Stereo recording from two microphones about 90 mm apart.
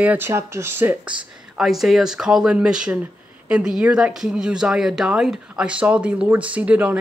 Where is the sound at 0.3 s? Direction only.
30° right (ahead or behind).